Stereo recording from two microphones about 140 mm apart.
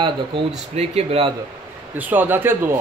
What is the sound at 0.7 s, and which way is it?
Speech, 45° right (ahead or behind).